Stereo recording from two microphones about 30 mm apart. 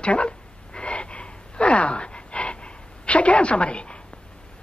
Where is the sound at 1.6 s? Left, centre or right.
Left.